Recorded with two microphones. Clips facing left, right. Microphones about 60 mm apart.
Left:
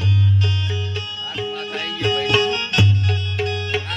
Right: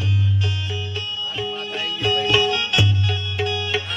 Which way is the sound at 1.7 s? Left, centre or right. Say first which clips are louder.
Even; left.